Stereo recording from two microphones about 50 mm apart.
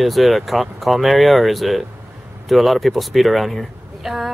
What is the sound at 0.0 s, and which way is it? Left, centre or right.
Speech, centre.